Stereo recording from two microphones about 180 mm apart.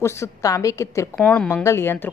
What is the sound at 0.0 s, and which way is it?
Speech, 15° left (ahead or behind).